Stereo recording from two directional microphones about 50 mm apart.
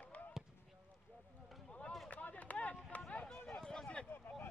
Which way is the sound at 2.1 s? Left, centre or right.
Left.